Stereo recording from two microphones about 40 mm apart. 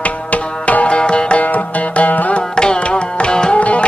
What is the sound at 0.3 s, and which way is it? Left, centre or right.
Music, left.